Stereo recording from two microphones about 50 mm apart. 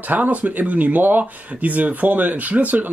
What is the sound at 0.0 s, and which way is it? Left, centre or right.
Speech, right.